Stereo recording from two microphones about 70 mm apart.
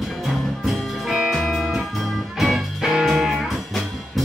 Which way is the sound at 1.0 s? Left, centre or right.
Centre.